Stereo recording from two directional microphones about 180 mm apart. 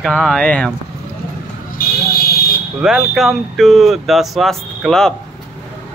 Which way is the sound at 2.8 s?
Centre (ahead or behind).